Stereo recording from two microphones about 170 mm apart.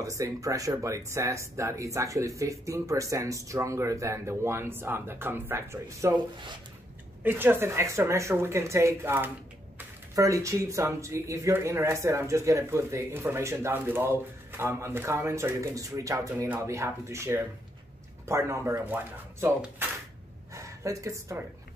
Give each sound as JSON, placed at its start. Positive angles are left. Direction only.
{"t": 0.0, "sound": "speech", "side_deg": -20}
{"t": 7.2, "sound": "speech", "side_deg": -10}